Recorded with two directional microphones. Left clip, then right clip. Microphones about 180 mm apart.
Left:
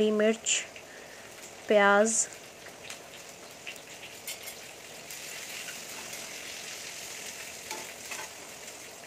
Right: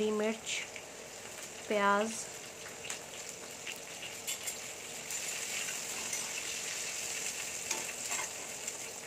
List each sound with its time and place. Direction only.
0.0 s speech: 30° left (ahead or behind)
1.7 s speech: 35° left (ahead or behind)